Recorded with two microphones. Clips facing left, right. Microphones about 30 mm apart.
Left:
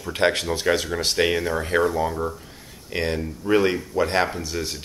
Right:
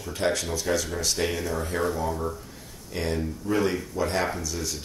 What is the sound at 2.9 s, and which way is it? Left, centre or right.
Speech, left.